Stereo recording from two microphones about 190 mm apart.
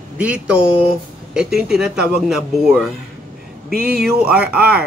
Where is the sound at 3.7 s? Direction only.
55° right (ahead or behind).